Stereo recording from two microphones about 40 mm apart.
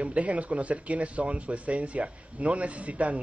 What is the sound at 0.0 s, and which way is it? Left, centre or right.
Speech, right.